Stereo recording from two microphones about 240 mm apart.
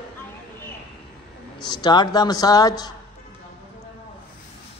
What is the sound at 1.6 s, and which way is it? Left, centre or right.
A man's voice, centre.